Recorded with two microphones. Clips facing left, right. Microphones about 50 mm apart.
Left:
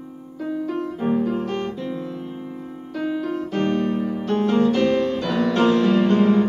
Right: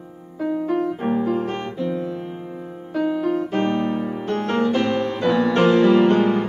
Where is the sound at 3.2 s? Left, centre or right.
Right.